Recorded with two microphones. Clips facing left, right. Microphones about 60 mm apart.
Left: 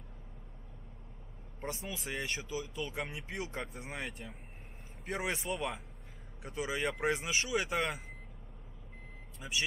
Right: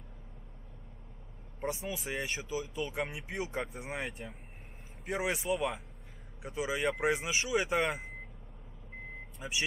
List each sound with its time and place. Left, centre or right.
1.6 s speech: centre
9.4 s speech: centre